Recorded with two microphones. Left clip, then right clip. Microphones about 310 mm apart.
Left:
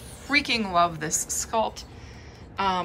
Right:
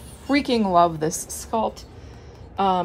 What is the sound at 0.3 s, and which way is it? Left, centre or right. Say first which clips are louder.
A woman's voice: right 3 dB; centre.